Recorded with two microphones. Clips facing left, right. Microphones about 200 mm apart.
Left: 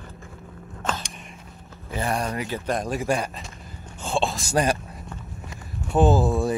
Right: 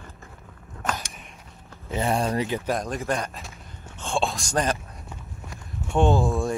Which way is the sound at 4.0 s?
5° left (ahead or behind).